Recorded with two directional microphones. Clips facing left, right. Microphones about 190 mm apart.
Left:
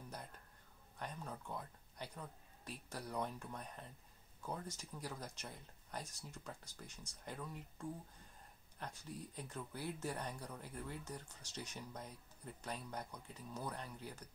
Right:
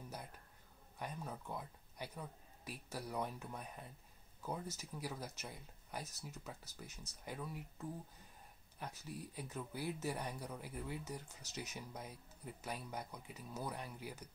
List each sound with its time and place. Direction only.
0.9 s speech: 10° right (ahead or behind)